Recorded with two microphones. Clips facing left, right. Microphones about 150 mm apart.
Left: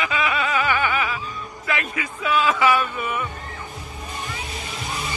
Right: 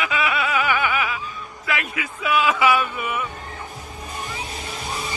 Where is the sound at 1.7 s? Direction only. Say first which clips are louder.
Even; 5° right (ahead or behind).